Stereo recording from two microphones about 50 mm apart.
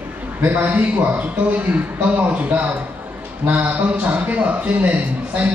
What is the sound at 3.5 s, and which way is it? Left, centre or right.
A man's voice, right.